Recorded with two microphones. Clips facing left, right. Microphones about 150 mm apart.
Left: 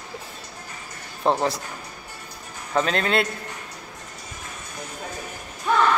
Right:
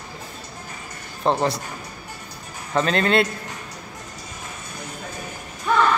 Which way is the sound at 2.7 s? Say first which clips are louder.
Right 3 dB; 5° left (ahead or behind).